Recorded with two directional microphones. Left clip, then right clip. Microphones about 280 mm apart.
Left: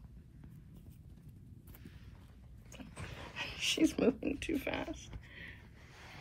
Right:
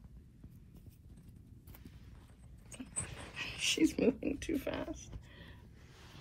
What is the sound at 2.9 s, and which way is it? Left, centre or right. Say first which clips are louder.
Dog: right 2 dB; left.